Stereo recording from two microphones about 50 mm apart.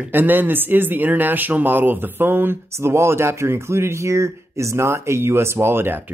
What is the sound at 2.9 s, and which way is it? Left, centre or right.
Speech, right.